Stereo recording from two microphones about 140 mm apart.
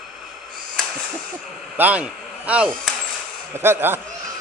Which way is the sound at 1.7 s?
10° right (ahead or behind).